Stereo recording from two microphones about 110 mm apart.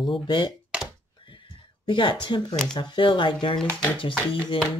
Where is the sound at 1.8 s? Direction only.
45° left (ahead or behind).